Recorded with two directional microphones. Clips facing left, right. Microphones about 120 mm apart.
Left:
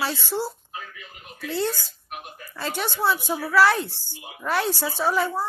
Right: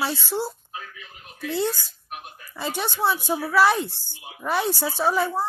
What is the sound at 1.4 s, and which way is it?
A woman's voice, 15° right (ahead or behind).